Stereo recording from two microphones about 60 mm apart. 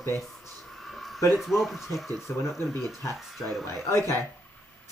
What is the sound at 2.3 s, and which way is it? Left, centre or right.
Speech, left.